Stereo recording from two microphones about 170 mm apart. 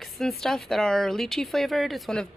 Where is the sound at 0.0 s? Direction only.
Centre (ahead or behind).